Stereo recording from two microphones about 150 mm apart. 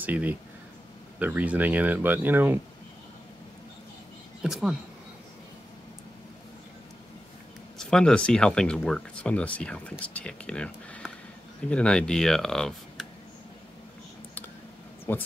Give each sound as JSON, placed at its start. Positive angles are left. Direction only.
{"t": 0.0, "sound": "speech", "side_deg": -10}
{"t": 4.4, "sound": "speech", "side_deg": -5}
{"t": 7.7, "sound": "speech", "side_deg": 5}
{"t": 15.1, "sound": "speech", "side_deg": 15}